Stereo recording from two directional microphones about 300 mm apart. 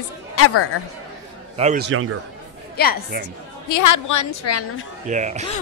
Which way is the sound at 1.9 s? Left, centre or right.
Right.